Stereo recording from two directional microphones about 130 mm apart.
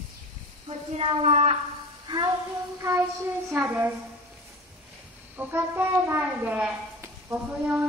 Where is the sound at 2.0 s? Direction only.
35° right (ahead or behind).